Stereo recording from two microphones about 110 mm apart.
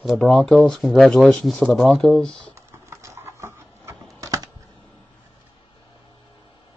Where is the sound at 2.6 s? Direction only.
25° right (ahead or behind).